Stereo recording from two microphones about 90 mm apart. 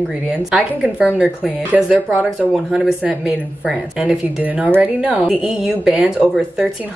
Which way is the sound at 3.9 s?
15° right (ahead or behind).